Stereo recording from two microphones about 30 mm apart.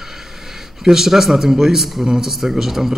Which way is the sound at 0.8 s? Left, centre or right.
Centre.